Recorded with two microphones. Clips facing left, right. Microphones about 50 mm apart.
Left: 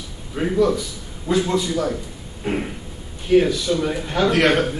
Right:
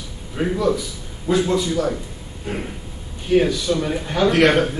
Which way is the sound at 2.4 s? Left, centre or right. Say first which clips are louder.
Left 4 dB; left.